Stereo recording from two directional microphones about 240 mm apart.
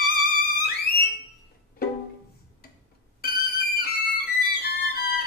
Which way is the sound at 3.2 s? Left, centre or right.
Left.